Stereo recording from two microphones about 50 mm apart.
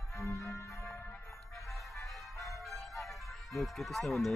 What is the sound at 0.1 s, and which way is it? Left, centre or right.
Music, left.